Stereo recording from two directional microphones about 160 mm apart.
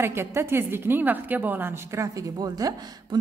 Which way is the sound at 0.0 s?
15° right (ahead or behind).